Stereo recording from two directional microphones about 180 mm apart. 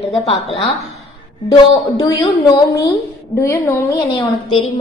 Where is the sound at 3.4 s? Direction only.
15° left (ahead or behind).